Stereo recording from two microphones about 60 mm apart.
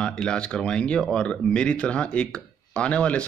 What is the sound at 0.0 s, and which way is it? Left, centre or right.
Speech, centre.